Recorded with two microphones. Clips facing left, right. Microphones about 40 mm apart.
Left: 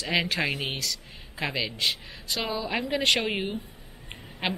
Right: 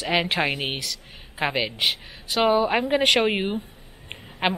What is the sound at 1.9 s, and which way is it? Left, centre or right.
Speech, centre.